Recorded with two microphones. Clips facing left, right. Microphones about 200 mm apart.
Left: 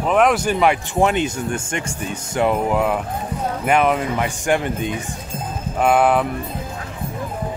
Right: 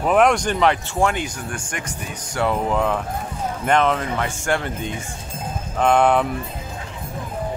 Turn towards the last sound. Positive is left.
turn(degrees=5)  # may be behind; listen again after turning